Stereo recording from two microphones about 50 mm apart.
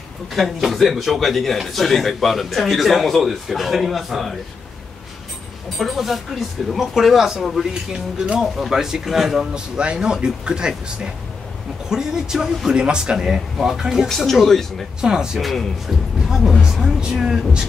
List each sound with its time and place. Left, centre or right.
0.3 s a man's voice: centre
5.8 s a man's voice: centre
9.5 s speech: centre
14.0 s speech: centre
15.0 s speech: centre